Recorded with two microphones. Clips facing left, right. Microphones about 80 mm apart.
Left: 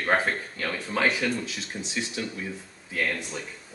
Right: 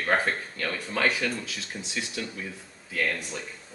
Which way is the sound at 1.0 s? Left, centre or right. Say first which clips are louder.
Left 1 dB; left.